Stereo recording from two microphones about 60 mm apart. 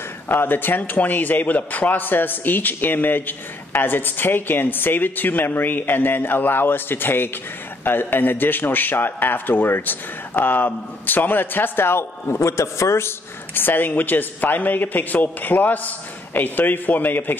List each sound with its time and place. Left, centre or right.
0.3 s a man's voice: left
13.6 s a man's voice: left